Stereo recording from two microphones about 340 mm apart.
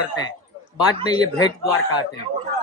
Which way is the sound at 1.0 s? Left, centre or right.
Centre.